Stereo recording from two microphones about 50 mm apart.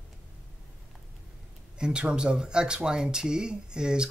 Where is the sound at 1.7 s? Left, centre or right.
Centre.